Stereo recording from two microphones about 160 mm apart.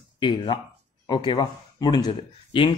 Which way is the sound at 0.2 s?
30° left (ahead or behind).